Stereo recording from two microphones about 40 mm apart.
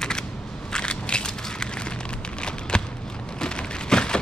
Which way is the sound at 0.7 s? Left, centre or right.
Left.